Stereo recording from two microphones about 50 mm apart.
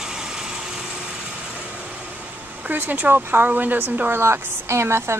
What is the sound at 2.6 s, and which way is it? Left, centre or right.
Speech, right.